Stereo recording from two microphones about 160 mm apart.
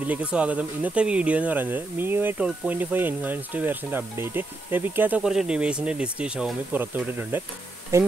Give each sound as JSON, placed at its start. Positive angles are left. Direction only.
{"t": 0.0, "sound": "speech", "side_deg": -10}